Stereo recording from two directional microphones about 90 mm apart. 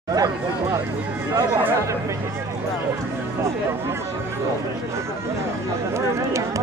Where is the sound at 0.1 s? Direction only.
45° right (ahead or behind).